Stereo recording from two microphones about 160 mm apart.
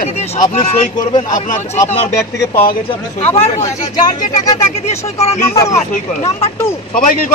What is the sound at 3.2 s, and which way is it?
Speech, 40° left (ahead or behind).